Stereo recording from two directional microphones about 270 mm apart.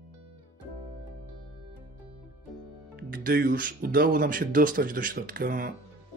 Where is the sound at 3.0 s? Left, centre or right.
Right.